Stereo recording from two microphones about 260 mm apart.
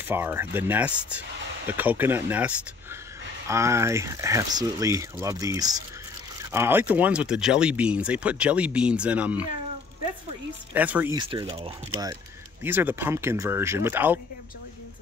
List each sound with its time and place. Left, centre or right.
0.1 s speech: centre
10.7 s speech: centre
11.1 s speech: centre
12.6 s speech: centre